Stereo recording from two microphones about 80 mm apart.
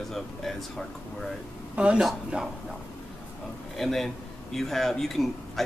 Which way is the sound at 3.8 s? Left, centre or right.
Centre.